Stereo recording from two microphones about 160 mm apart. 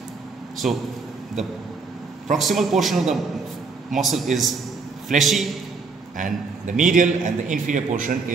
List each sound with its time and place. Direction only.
2.3 s a man's voice: centre (ahead or behind)
6.1 s a man's voice: 55° right (ahead or behind)